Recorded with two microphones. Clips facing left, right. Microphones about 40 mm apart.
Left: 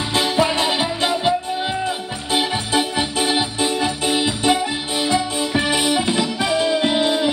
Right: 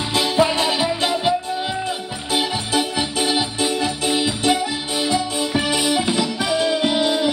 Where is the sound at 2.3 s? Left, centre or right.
Left.